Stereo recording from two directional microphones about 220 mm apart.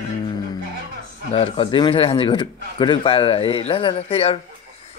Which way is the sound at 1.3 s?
25° left (ahead or behind).